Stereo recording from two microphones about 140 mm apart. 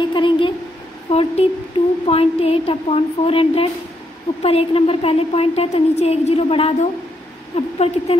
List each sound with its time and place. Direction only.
0.0 s a woman's voice: 35° left (ahead or behind)